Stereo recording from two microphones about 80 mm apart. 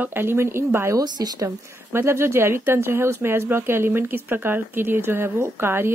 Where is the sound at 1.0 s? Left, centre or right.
Right.